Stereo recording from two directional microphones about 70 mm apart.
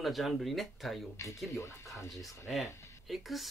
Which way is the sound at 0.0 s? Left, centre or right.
Centre.